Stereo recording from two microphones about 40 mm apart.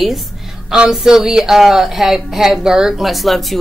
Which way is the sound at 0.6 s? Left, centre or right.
Centre.